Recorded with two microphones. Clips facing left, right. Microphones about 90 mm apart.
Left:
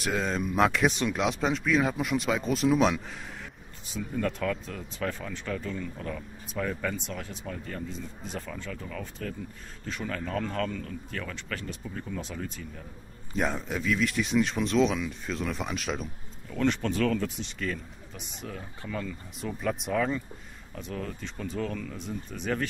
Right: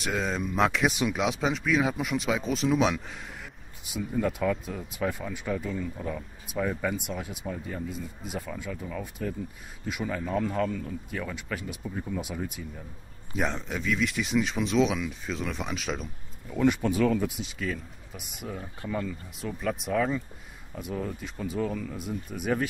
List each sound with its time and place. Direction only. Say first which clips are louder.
0.0 s speech: even; centre (ahead or behind)
13.4 s speech: left 1 dB; centre (ahead or behind)
16.4 s speech: right 3 dB; 10° right (ahead or behind)
19.4 s speech: even; centre (ahead or behind)